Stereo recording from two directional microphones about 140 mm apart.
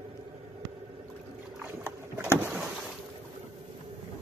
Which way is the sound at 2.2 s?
20° right (ahead or behind).